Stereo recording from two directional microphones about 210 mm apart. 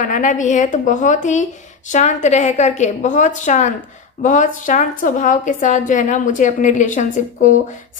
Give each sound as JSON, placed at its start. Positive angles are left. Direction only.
{"t": 0.0, "sound": "a woman's voice", "side_deg": 35}